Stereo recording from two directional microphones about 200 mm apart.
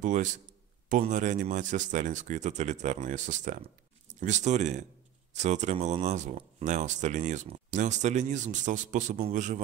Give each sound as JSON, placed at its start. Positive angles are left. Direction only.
{"t": 0.0, "sound": "speech", "side_deg": -40}